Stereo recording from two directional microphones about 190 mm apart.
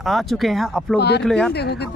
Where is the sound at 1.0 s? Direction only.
60° left (ahead or behind).